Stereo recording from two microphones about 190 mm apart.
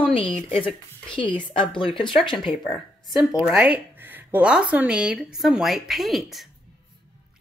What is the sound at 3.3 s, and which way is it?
Speech, 5° right (ahead or behind).